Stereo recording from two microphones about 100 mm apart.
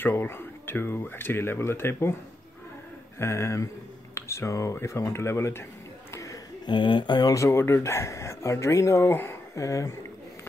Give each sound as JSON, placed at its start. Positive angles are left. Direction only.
{"t": 0.0, "sound": "speech", "side_deg": 20}
{"t": 3.2, "sound": "speech", "side_deg": 25}
{"t": 6.6, "sound": "speech", "side_deg": 50}
{"t": 7.3, "sound": "speech", "side_deg": 25}
{"t": 9.6, "sound": "speech", "side_deg": 30}